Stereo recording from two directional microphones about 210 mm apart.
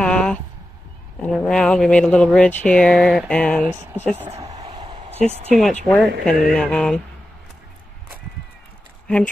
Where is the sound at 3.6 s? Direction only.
10° right (ahead or behind).